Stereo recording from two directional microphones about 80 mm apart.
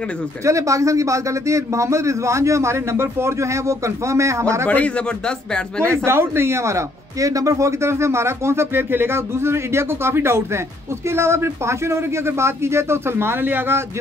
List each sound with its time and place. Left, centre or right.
0.5 s speech: right
4.6 s speech: centre
6.0 s speech: right